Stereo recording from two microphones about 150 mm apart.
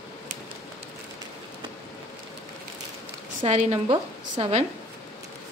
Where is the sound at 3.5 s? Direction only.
50° right (ahead or behind).